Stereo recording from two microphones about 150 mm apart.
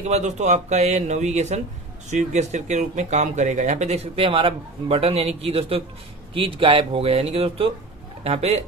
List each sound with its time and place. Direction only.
0.1 s speech: 50° right (ahead or behind)